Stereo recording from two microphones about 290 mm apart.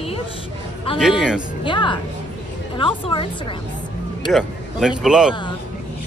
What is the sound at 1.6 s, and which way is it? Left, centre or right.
A woman's voice, centre.